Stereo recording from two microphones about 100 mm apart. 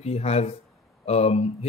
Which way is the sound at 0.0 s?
90° left.